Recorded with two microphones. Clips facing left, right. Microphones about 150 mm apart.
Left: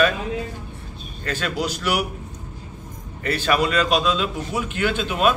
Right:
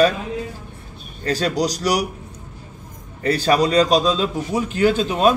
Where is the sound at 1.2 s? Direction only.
35° right (ahead or behind).